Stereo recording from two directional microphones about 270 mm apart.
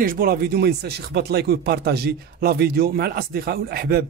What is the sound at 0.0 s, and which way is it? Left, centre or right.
Speech, right.